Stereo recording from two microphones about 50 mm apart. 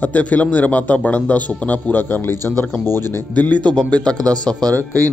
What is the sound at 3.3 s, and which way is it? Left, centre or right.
A man's voice, left.